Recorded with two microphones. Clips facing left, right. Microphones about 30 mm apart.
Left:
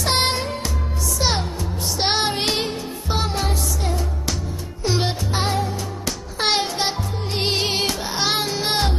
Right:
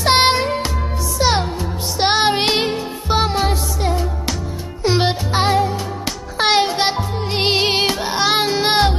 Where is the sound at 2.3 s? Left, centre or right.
Right.